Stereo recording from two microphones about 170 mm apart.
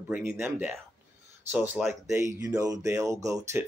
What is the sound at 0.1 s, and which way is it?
Speech, 10° right (ahead or behind).